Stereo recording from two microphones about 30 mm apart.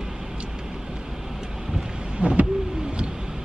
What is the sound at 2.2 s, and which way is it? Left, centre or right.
Owl, right.